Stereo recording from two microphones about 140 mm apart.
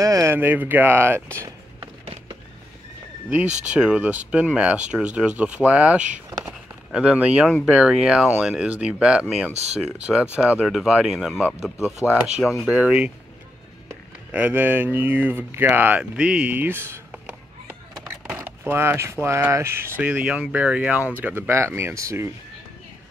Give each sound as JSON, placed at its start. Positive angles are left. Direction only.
{"t": 0.0, "sound": "speech", "side_deg": -20}
{"t": 3.3, "sound": "speech", "side_deg": -10}
{"t": 6.4, "sound": "a sound", "side_deg": -5}
{"t": 7.6, "sound": "speech", "side_deg": -5}
{"t": 9.5, "sound": "speech", "side_deg": -50}
{"t": 10.3, "sound": "speech", "side_deg": -10}
{"t": 18.4, "sound": "speech", "side_deg": -15}